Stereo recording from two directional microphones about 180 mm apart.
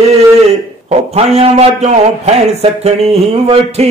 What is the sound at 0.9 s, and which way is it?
A man's voice, 35° right (ahead or behind).